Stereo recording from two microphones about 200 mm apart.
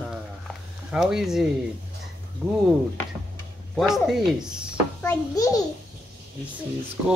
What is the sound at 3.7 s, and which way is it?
Speech, centre (ahead or behind).